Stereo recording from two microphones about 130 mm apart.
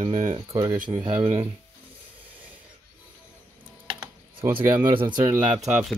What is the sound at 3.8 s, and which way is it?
Computer keyboard, 35° right (ahead or behind).